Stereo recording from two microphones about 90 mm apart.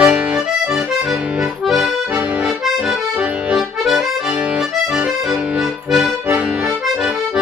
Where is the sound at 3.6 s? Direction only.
5° right (ahead or behind).